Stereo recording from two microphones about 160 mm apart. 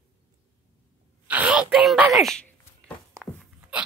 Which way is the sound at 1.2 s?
10° right (ahead or behind).